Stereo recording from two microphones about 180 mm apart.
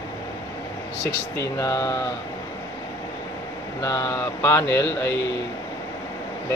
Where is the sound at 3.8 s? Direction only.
20° left (ahead or behind).